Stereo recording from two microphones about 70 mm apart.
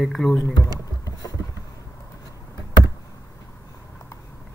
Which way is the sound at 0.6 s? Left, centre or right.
Left.